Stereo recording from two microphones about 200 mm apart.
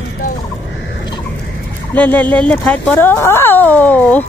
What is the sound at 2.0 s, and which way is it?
Speech, 10° left (ahead or behind).